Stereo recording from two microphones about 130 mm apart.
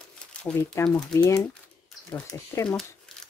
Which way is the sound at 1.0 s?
10° left (ahead or behind).